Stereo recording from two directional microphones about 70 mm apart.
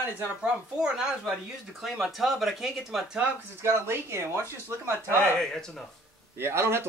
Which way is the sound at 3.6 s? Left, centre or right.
Right.